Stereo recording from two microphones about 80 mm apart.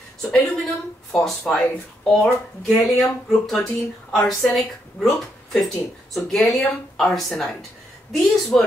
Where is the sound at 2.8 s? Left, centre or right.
Centre.